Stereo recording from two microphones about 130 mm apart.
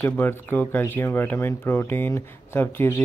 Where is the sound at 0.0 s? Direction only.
15° left (ahead or behind).